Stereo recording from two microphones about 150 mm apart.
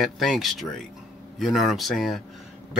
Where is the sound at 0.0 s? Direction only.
Centre (ahead or behind).